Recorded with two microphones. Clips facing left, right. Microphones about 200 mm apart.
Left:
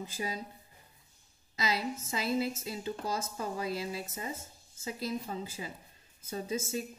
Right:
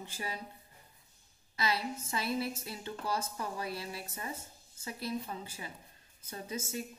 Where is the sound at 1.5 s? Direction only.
20° left (ahead or behind).